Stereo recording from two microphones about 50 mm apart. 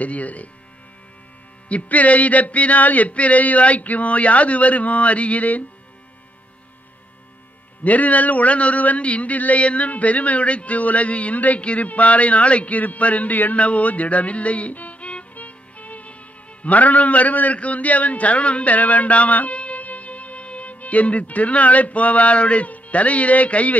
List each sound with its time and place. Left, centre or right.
0.0 s music: left
1.7 s music: left
7.8 s speech: left